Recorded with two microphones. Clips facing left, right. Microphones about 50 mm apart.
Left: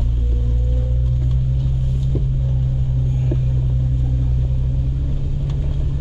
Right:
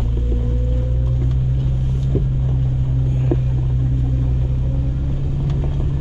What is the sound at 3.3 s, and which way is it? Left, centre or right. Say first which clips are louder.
Rumble: right 7 dB; right.